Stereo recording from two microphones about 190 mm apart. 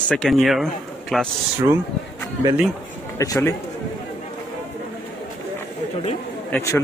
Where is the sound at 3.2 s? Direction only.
15° left (ahead or behind).